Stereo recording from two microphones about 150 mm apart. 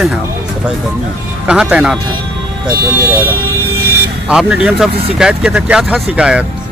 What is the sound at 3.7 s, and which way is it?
Vehicle, 90° right.